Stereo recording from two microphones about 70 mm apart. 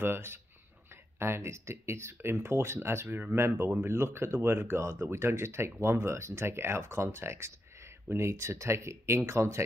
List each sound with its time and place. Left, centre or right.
0.0 s speech: right
3.2 s speech: right
3.4 s speech: right